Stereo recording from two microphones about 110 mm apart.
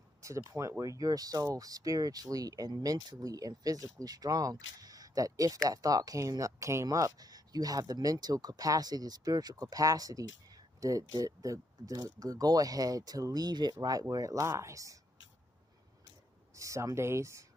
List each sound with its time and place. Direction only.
0.2 s speech: 25° right (ahead or behind)
16.5 s speech: 30° right (ahead or behind)